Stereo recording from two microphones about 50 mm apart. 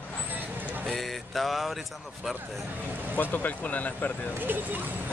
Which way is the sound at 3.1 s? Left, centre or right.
Left.